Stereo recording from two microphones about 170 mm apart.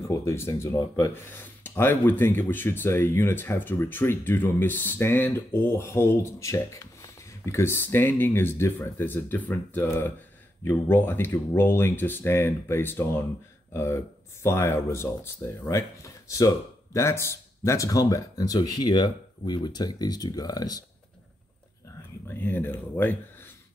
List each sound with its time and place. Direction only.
0.1 s speech: 15° left (ahead or behind)
22.3 s speech: 10° left (ahead or behind)